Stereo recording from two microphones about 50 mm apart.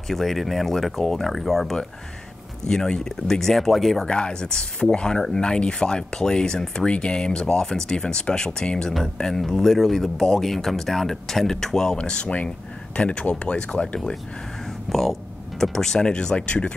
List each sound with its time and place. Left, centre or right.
0.1 s speech: centre
4.1 s speech: centre
12.0 s speech: left
14.9 s speech: centre; by 16.7 s left